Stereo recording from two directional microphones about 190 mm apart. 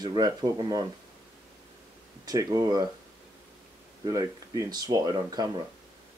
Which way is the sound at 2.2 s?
20° right (ahead or behind).